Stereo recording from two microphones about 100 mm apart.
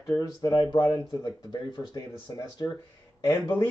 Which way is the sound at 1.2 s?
50° left (ahead or behind).